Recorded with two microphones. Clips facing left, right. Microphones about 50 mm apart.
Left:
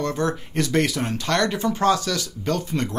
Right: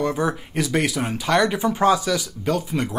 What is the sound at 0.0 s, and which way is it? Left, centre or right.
Speech, centre.